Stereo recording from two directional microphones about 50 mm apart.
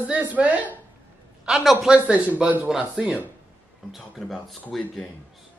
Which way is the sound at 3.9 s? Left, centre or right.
Centre.